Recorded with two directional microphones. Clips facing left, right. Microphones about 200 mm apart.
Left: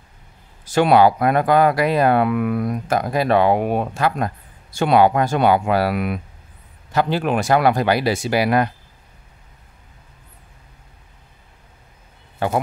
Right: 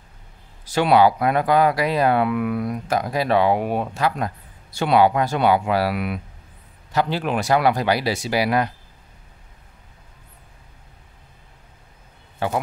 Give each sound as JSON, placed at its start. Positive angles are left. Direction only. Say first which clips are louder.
{"t": 0.7, "sound": "speech", "louder": "left 2 dB", "side_deg": 50}